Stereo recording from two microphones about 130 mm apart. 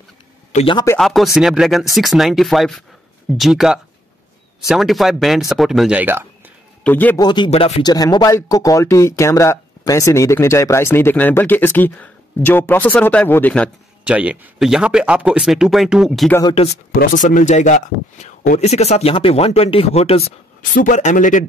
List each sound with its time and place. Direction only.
0.9 s speech: centre (ahead or behind); by 6.5 s 15° right (ahead or behind)
6.8 s a man's voice: 15° left (ahead or behind)
7.2 s speech: 35° left (ahead or behind)
7.5 s speech: 50° left (ahead or behind)
7.8 s speech: 30° left (ahead or behind); by 13.7 s 10° left (ahead or behind)
14.0 s speech: 10° right (ahead or behind)
16.9 s a man's voice: 90° left; by 20.2 s 50° left (ahead or behind)
20.7 s a man's voice: 80° left